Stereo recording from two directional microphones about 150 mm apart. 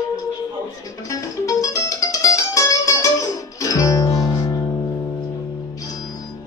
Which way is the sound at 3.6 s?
20° left (ahead or behind).